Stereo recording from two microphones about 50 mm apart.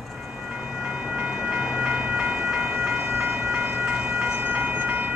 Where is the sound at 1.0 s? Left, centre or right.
Right.